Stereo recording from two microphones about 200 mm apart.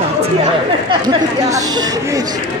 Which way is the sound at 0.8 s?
20° right (ahead or behind).